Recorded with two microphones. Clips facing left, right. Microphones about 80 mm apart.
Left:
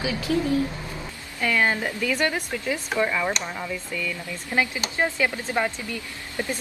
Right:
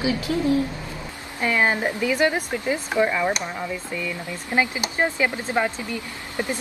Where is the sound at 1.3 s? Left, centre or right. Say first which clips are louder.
Right 2 dB; right.